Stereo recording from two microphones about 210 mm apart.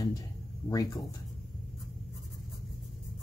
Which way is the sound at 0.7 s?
20° left (ahead or behind).